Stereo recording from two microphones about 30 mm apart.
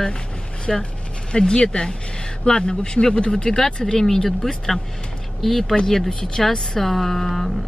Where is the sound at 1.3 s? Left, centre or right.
Left.